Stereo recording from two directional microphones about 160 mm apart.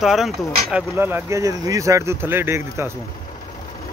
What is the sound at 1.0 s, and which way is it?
Speech, 15° right (ahead or behind).